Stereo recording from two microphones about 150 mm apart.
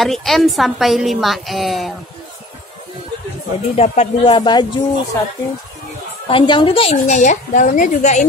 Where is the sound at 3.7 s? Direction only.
45° left (ahead or behind).